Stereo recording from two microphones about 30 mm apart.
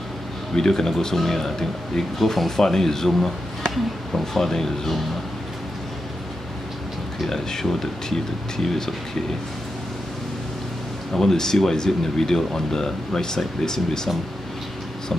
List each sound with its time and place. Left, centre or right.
0.6 s speech: centre
7.2 s speech: centre
11.1 s speech: centre